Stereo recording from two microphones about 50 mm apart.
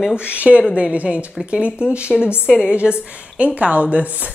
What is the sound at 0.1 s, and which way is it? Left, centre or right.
A woman's voice, right.